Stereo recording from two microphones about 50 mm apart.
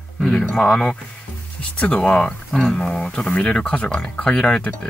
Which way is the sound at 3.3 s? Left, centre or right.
Left.